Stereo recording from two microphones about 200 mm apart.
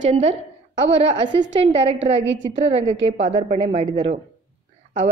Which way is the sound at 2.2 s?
65° right (ahead or behind).